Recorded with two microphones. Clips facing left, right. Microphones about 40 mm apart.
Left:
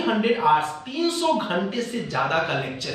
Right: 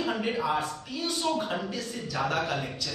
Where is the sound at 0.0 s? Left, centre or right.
Left.